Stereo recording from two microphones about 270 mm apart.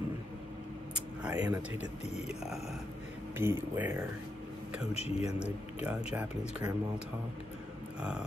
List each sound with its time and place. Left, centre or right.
1.2 s a sound: centre
2.2 s speech: centre
4.9 s speech: left
5.4 s speech: centre